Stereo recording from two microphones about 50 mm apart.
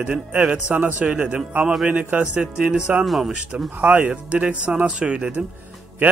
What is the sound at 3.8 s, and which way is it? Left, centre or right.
A man's voice, right.